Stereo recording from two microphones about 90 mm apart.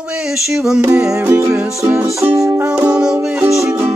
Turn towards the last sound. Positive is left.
turn(degrees=-10)  # may be behind; listen again after turning